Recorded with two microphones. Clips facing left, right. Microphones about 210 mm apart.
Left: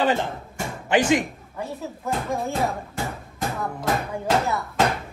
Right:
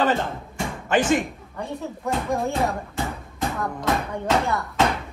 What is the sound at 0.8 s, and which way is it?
Speech, 15° left (ahead or behind).